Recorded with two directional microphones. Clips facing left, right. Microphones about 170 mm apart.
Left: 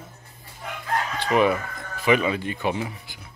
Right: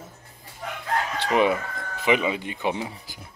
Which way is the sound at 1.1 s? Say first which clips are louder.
Left 1 dB; 25° right (ahead or behind).